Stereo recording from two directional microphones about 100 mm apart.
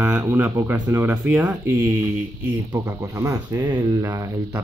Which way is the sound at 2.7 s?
35° right (ahead or behind).